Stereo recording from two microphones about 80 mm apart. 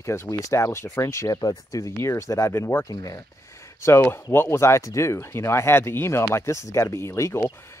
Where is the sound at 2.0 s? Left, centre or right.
Left.